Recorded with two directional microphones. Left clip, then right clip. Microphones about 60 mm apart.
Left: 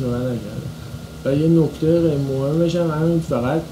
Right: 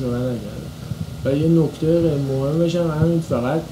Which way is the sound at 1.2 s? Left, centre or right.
Left.